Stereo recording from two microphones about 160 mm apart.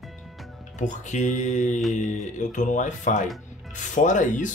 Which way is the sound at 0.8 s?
50° left (ahead or behind).